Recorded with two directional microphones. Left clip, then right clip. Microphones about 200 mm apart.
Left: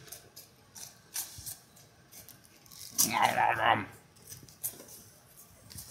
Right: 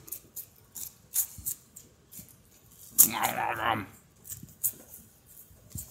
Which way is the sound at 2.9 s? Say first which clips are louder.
Left 2 dB; 25° right (ahead or behind).